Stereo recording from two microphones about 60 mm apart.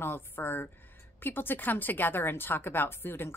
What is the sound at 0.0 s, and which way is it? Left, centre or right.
A woman's voice, left.